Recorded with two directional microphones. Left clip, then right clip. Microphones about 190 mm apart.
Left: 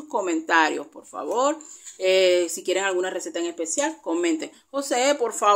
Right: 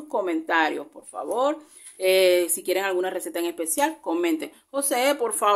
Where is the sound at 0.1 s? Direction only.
5° left (ahead or behind).